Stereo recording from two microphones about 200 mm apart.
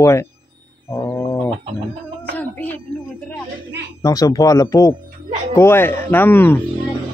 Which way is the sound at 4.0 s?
15° left (ahead or behind).